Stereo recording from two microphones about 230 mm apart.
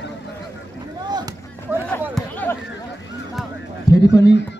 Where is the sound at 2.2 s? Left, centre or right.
Centre.